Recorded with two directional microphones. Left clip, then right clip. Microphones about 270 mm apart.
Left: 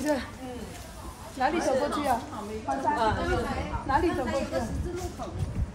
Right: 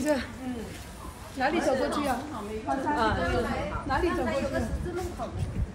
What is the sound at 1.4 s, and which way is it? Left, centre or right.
Speech, left.